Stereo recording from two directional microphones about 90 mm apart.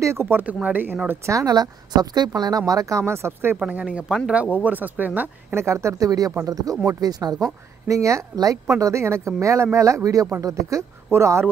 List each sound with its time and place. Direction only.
0.0 s speech: 30° right (ahead or behind)
1.2 s speech: 40° right (ahead or behind)
3.5 s speech: 15° right (ahead or behind); by 7.4 s 45° right (ahead or behind)
7.9 s speech: 35° right (ahead or behind)